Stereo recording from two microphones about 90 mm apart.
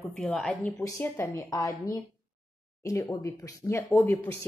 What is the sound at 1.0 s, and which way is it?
Speech, 25° left (ahead or behind).